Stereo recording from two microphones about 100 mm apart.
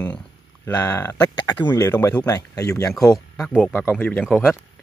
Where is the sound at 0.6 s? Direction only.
25° left (ahead or behind).